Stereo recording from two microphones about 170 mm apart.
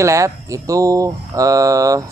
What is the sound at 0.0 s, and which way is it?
Speech, 20° right (ahead or behind).